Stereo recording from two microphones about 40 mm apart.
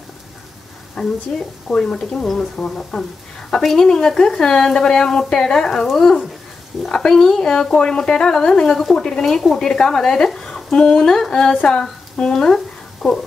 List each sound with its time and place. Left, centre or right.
1.0 s speech: centre
1.7 s speech: centre
2.9 s speech: centre
3.4 s speech: centre
5.9 s speech: centre
9.2 s a woman's voice: centre
13.0 s speech: centre